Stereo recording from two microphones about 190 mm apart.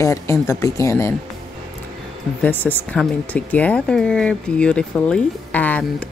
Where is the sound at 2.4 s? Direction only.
10° left (ahead or behind).